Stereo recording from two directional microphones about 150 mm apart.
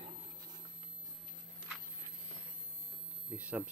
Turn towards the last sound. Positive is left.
turn(degrees=-10)  # may be behind; listen again after turning